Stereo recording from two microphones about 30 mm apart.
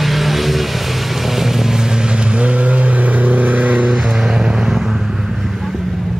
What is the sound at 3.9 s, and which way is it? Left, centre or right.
Vehicle, centre.